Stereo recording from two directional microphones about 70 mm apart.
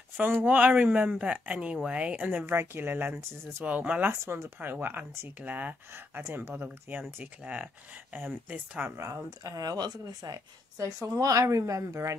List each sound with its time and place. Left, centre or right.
0.2 s speech: right
2.4 s speech: right
4.1 s speech: right
4.6 s speech: right
6.2 s speech: right
8.9 s speech: right
10.8 s a woman's voice: right